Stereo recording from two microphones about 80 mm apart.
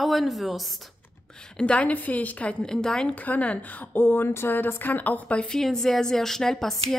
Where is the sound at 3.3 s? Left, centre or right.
Centre.